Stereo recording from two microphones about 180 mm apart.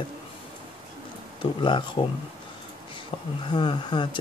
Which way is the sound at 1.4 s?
30° left (ahead or behind).